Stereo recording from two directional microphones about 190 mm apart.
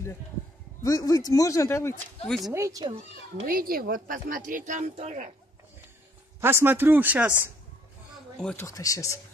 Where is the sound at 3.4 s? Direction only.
50° right (ahead or behind).